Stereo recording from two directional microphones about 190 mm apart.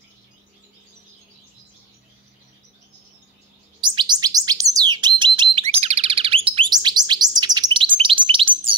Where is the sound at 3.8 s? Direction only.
25° right (ahead or behind).